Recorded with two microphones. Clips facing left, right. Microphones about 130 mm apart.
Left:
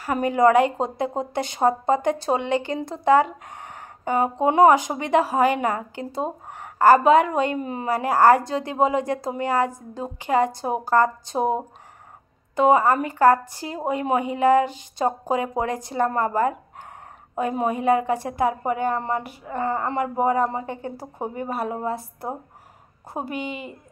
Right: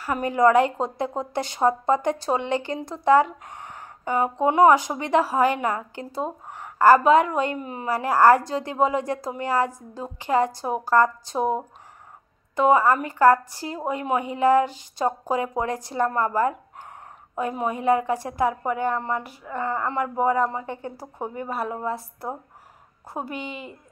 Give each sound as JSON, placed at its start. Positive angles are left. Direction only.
{"t": 0.0, "sound": "a woman's voice", "side_deg": 20}
{"t": 4.1, "sound": "a woman's voice", "side_deg": 25}
{"t": 7.9, "sound": "a woman's voice", "side_deg": 15}
{"t": 9.7, "sound": "a woman's voice", "side_deg": 60}
{"t": 10.0, "sound": "a woman's voice", "side_deg": 15}